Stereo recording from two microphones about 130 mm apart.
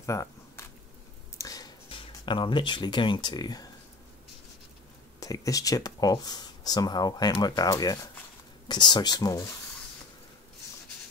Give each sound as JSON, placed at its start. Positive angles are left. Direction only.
{"t": 0.0, "sound": "camera", "side_deg": 25}
{"t": 1.4, "sound": "a sound", "side_deg": 25}
{"t": 1.9, "sound": "speech", "side_deg": 40}
{"t": 5.2, "sound": "speech", "side_deg": 25}